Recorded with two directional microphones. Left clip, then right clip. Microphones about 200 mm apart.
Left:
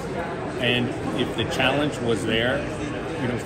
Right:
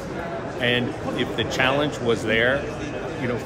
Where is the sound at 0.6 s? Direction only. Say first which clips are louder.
Right 1 dB; 45° right (ahead or behind).